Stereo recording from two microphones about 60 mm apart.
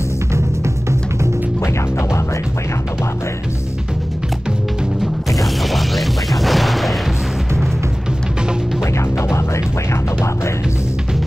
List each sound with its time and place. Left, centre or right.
1.6 s music: left
5.4 s music: centre
8.9 s music: left